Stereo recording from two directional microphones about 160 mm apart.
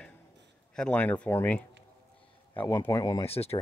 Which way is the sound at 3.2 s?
40° left (ahead or behind).